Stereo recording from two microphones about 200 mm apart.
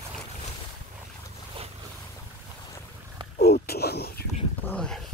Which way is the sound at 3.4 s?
50° left (ahead or behind).